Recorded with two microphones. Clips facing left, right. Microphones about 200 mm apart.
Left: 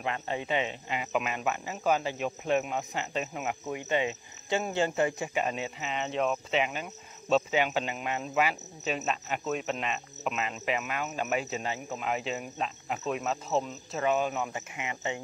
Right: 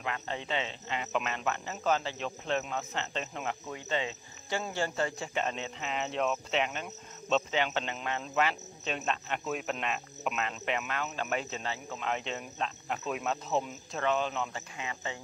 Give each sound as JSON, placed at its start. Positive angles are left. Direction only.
{"t": 0.0, "sound": "speech", "side_deg": 20}
{"t": 0.4, "sound": "cricket", "side_deg": 15}